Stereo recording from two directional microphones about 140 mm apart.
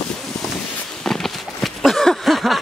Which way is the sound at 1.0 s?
Centre (ahead or behind).